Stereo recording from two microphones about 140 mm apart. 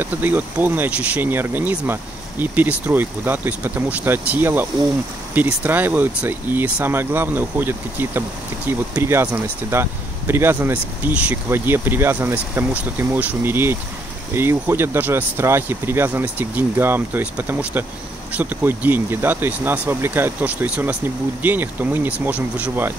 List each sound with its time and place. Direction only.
0.0 s speech: 15° right (ahead or behind)